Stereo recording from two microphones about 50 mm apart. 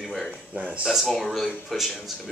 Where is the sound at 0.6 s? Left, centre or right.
Right.